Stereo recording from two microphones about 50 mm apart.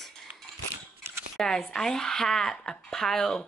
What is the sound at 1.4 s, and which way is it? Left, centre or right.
Speech, centre.